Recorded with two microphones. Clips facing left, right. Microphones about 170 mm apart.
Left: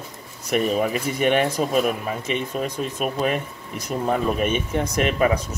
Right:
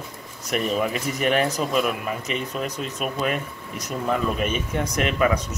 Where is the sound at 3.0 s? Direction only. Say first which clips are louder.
Left 2 dB; 40° left (ahead or behind).